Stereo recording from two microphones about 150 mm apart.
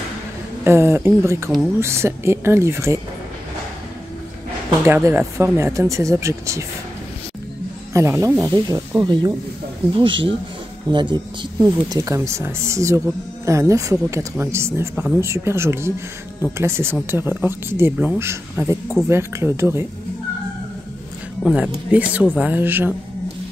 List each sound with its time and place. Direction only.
0.7 s speech: 15° right (ahead or behind)
4.8 s speech: 15° right (ahead or behind)
7.9 s speech: 20° right (ahead or behind)
21.4 s speech: centre (ahead or behind)